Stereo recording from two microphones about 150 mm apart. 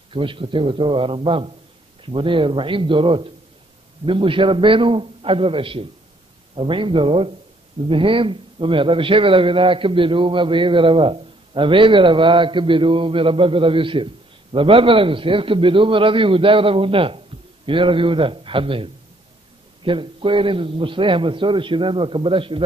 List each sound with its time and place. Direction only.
0.1 s a man's voice: 35° right (ahead or behind)